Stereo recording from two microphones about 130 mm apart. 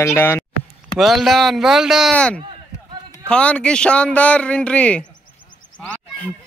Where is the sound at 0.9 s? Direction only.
Centre (ahead or behind).